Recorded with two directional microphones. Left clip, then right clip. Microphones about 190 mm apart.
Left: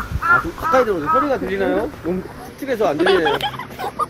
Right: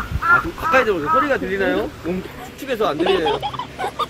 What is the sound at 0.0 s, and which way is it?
Speech, centre (ahead or behind).